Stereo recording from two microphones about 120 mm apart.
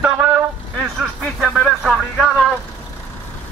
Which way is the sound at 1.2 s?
Centre (ahead or behind).